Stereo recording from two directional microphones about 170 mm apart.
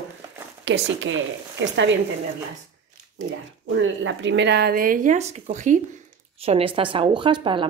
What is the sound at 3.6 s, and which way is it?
Speech, 90° right.